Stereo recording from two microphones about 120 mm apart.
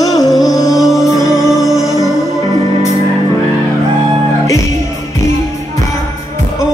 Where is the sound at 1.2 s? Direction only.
30° left (ahead or behind).